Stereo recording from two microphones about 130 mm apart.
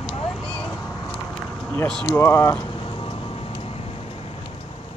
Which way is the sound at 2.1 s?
20° left (ahead or behind).